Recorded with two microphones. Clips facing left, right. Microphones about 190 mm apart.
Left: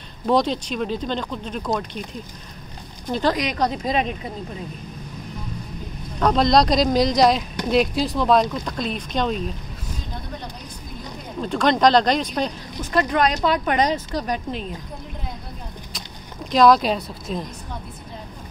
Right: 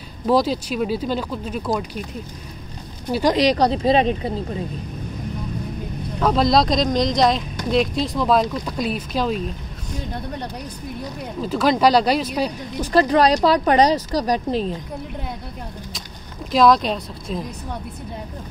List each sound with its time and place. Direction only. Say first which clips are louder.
0.3 s speech: right 2 dB; 5° right (ahead or behind)
3.1 s speech: right 2 dB; 10° right (ahead or behind)
3.3 s a woman's voice: right 6 dB; 35° right (ahead or behind)
6.1 s speech: even; 5° right (ahead or behind)
11.4 s speech: right 1 dB; 5° right (ahead or behind)
12.9 s a woman's voice: right 4 dB; 35° right (ahead or behind)
16.5 s speech: even; centre (ahead or behind)